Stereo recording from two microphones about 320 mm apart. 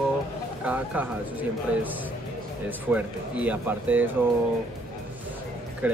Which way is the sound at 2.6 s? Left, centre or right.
Centre.